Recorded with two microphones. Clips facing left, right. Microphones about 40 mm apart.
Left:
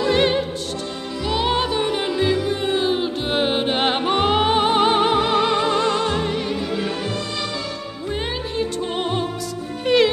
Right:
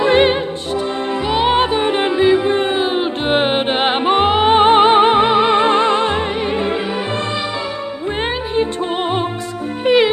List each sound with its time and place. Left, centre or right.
0.0 s music: right
9.8 s music: right